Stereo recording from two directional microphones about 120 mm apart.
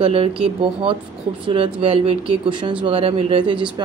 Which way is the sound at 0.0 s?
55° right (ahead or behind).